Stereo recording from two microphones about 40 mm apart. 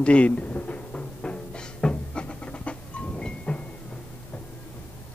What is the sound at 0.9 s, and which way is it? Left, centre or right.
Music, left.